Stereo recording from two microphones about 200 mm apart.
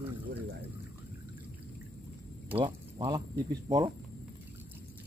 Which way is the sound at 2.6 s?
20° right (ahead or behind).